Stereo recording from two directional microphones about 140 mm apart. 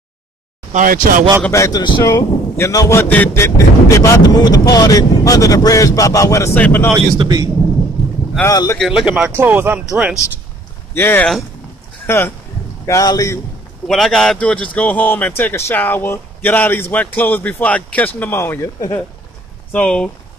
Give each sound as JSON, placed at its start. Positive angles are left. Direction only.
{"t": 0.7, "sound": "speech", "side_deg": -75}
{"t": 1.5, "sound": "speech", "side_deg": 20}
{"t": 7.2, "sound": "speech", "side_deg": -30}
{"t": 8.5, "sound": "speech", "side_deg": 20}
{"t": 8.7, "sound": "speech", "side_deg": 0}
{"t": 11.0, "sound": "a man's voice", "side_deg": 15}
{"t": 13.8, "sound": "a man's voice", "side_deg": 0}
{"t": 19.7, "sound": "a man's voice", "side_deg": 5}